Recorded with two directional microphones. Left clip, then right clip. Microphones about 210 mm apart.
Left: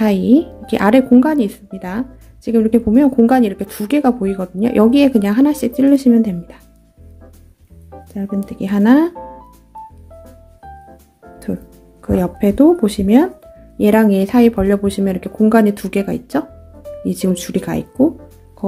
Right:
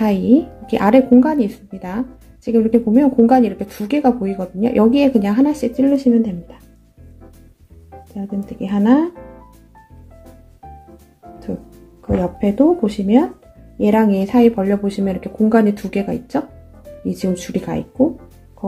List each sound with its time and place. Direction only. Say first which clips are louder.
0.0 s a woman's voice: left 2 dB; 15° left (ahead or behind)
8.5 s speech: left 2 dB; 25° left (ahead or behind)
12.2 s speech: left 3 dB; 25° left (ahead or behind)